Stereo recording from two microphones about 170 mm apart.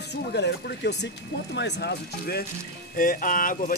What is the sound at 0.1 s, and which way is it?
Speech, 80° left.